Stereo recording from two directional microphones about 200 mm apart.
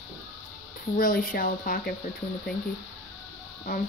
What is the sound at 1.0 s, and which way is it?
Speech, 45° left (ahead or behind).